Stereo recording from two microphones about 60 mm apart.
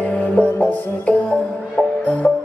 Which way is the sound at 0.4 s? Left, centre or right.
Left.